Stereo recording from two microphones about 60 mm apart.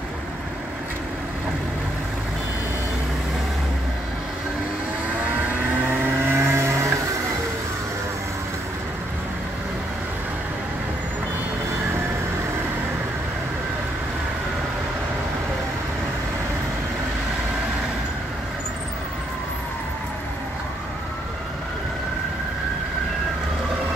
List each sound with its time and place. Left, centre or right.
5.9 s vehicle: right